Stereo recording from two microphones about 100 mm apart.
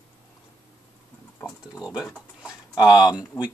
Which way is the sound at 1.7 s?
10° right (ahead or behind).